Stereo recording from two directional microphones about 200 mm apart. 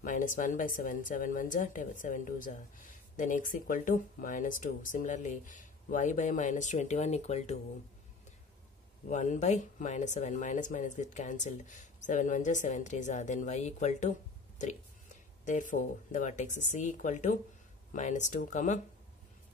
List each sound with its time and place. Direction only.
0.0 s speech: 40° left (ahead or behind)
9.1 s speech: 35° left (ahead or behind)
15.4 s speech: 40° left (ahead or behind)